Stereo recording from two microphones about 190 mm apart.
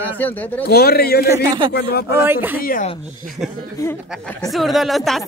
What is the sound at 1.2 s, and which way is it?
Speech, 15° right (ahead or behind).